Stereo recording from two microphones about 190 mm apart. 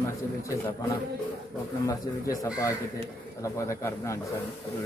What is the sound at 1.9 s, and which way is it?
A man's voice, 15° left (ahead or behind).